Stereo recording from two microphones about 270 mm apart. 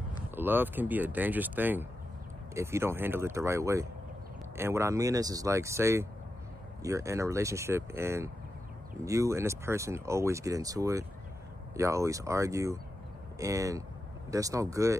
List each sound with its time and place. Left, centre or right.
0.3 s speech: centre